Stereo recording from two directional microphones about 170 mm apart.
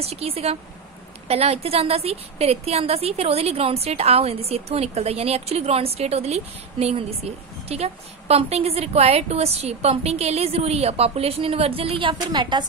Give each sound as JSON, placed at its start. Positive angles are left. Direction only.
{"t": 0.0, "sound": "a woman's voice", "side_deg": -35}